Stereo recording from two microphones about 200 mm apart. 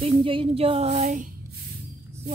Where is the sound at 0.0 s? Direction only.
25° right (ahead or behind).